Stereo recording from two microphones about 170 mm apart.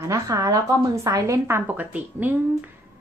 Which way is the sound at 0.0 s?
15° right (ahead or behind).